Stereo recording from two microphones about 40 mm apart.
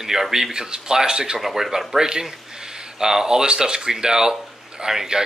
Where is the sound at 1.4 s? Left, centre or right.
Centre.